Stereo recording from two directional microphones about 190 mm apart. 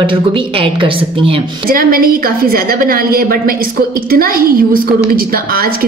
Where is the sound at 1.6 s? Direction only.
50° right (ahead or behind).